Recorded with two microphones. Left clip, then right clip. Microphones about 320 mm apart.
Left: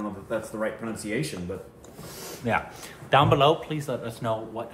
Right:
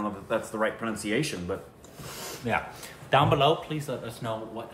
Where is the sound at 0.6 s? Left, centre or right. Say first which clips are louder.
Right 2 dB; centre.